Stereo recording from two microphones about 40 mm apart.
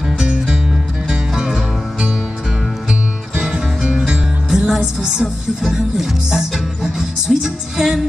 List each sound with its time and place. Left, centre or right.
0.2 s music: centre
3.5 s music: centre
5.0 s speech: centre